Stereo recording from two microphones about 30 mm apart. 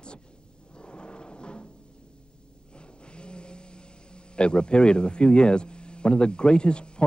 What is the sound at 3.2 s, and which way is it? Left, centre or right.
Vehicle, left.